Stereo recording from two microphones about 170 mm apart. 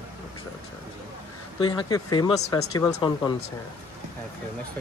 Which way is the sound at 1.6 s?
25° left (ahead or behind).